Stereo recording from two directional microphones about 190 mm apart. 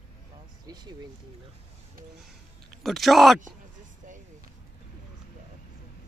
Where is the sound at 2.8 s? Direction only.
Centre (ahead or behind).